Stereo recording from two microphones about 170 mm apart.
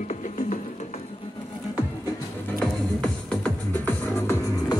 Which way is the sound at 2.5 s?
5° left (ahead or behind).